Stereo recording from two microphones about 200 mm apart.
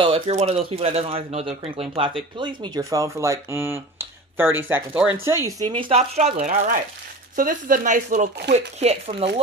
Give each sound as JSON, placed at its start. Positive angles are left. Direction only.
{"t": 0.0, "sound": "speech", "side_deg": -30}
{"t": 5.7, "sound": "speech", "side_deg": -25}